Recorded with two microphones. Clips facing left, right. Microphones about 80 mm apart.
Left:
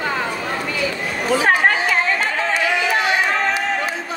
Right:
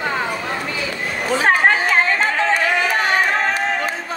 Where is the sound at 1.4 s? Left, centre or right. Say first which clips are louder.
Right 2 dB; right.